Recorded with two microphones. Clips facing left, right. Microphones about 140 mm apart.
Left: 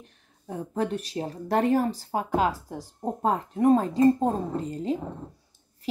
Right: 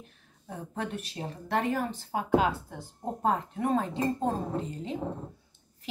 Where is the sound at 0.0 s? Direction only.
35° left (ahead or behind).